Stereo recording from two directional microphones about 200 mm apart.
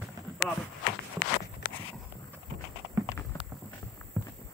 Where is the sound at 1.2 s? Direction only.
45° left (ahead or behind).